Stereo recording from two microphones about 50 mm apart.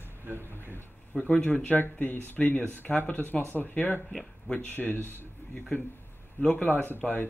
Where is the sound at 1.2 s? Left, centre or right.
Left.